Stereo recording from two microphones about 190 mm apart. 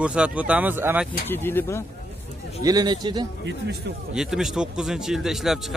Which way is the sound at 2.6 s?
20° right (ahead or behind).